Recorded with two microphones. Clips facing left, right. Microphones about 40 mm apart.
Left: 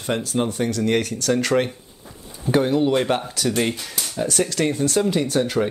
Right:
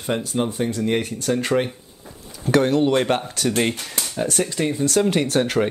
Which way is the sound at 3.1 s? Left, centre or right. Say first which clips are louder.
Right 1 dB; right.